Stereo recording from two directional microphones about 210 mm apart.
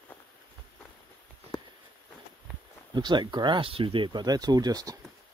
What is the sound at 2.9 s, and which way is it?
Speech, 20° right (ahead or behind).